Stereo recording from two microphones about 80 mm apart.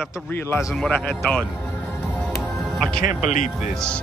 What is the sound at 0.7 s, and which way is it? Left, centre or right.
Speech, centre.